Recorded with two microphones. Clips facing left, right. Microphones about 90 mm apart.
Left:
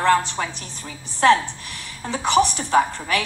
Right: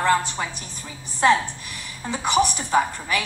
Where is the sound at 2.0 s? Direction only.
10° right (ahead or behind).